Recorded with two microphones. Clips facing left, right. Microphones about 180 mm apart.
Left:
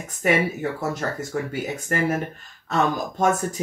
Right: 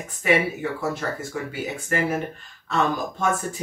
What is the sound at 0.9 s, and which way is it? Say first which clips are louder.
Speech: left 2 dB; 45° left (ahead or behind).